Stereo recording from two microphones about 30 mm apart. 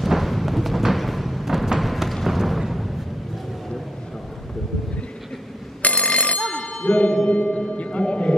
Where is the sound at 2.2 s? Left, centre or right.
Centre.